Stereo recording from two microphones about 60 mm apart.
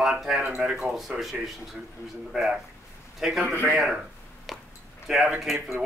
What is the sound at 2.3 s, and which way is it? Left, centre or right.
Speech, centre.